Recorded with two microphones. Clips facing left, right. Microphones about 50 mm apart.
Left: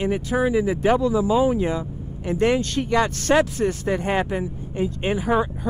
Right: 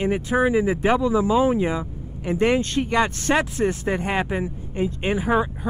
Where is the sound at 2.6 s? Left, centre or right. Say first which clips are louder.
Right 1 dB; right.